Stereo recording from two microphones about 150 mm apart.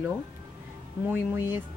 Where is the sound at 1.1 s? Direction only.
15° right (ahead or behind).